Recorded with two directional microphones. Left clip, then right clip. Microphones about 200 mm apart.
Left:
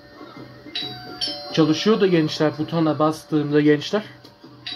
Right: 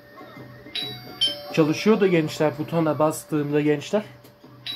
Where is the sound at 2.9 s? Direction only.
Centre (ahead or behind).